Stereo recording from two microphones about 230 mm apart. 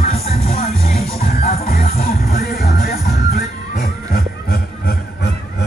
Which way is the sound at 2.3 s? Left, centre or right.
Left.